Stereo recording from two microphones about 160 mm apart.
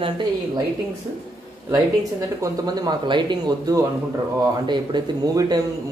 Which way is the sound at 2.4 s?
25° right (ahead or behind).